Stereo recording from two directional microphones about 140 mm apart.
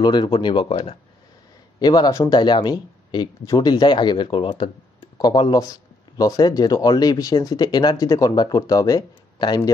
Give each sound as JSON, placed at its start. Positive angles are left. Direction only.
{"t": 0.0, "sound": "speech", "side_deg": 30}